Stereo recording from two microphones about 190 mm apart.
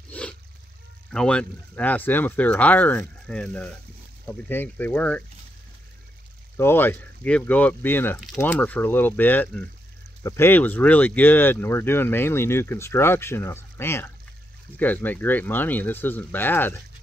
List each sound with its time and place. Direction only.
0.1 s a sound: 5° left (ahead or behind)
1.1 s speech: 5° left (ahead or behind)
6.5 s speech: 10° left (ahead or behind)